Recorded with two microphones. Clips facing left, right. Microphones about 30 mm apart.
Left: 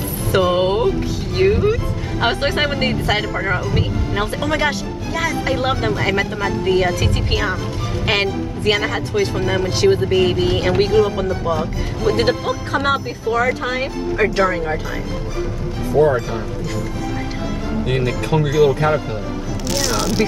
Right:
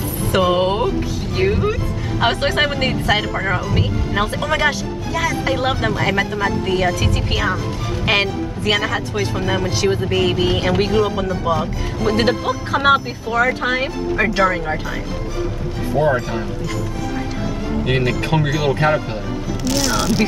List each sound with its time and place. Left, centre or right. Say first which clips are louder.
0.3 s a woman's voice: even; centre
9.7 s a woman's voice: left 6 dB; centre
10.0 s speech: left 1 dB; centre
13.4 s speech: right 4 dB; centre
13.7 s speech: even; centre
16.0 s speech: left 2 dB; centre
18.4 s speech: left 5 dB; centre
18.7 s speech: even; right
19.6 s speech: right 1 dB; centre